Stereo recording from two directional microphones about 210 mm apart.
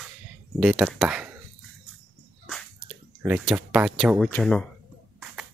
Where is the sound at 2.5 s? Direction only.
5° right (ahead or behind).